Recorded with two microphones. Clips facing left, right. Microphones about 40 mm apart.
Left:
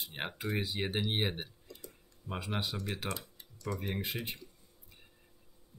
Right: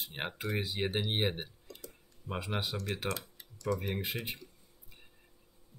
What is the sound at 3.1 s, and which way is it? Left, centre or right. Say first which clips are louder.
Typing: right 2 dB; right.